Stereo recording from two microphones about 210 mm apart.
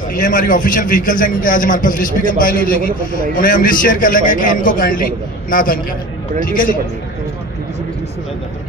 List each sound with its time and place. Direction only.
0.1 s a man's voice: 40° left (ahead or behind)